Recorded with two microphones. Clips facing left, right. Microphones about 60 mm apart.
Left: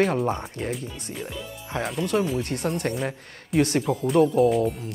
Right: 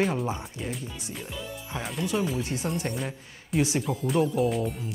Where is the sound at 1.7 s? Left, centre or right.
Left.